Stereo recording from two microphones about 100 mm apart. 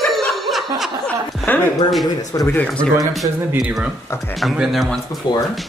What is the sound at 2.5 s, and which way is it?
A man's voice, 10° left (ahead or behind).